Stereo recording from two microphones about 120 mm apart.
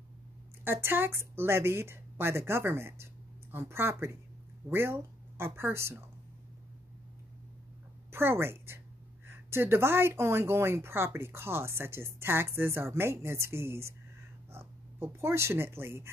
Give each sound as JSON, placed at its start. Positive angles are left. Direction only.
{"t": 0.7, "sound": "speech", "side_deg": -20}
{"t": 8.1, "sound": "a woman's voice", "side_deg": -20}